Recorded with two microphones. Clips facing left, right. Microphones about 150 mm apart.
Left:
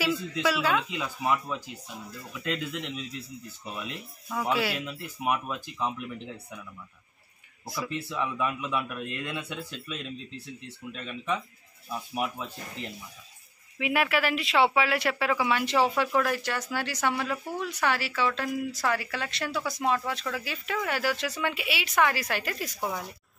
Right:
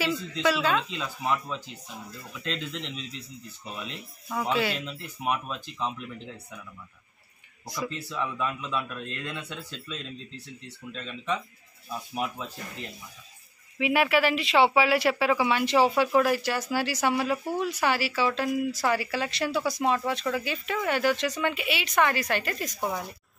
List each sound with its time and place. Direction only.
0.0 s a man's voice: 5° left (ahead or behind)
7.6 s speech: 5° left (ahead or behind)
7.9 s a man's voice: 15° left (ahead or behind)
13.7 s speech: centre (ahead or behind)